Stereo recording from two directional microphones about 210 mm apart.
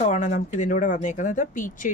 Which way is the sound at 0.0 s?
35° left (ahead or behind).